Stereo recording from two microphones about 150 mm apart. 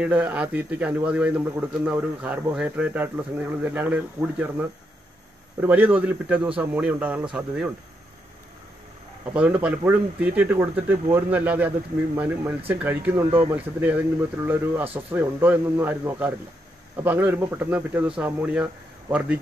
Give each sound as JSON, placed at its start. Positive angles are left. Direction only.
{"t": 0.0, "sound": "a man's voice", "side_deg": -10}
{"t": 9.3, "sound": "a man's voice", "side_deg": -5}